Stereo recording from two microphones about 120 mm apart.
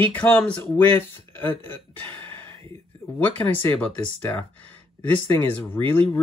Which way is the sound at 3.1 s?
15° left (ahead or behind).